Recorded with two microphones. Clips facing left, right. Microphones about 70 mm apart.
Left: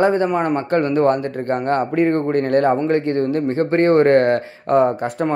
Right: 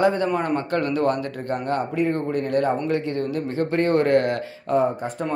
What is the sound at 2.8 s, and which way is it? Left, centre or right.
Speech, left.